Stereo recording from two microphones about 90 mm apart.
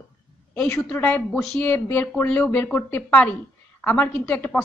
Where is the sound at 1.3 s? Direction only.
5° left (ahead or behind).